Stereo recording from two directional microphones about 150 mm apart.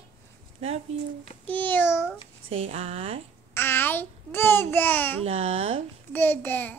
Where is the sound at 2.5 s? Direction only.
40° right (ahead or behind).